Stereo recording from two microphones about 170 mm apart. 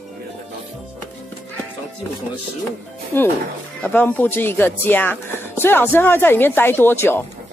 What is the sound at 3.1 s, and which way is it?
Speech, 15° left (ahead or behind).